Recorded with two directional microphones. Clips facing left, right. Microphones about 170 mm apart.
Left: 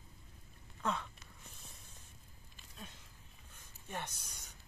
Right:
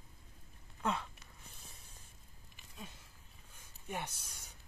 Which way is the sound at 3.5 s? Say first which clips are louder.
Right 2 dB; 10° right (ahead or behind).